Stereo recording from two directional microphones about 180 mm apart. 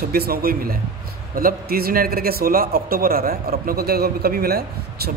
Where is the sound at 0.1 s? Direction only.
60° right (ahead or behind).